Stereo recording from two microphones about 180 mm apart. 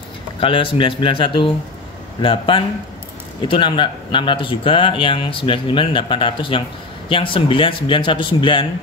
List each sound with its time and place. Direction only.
0.4 s speech: 30° left (ahead or behind)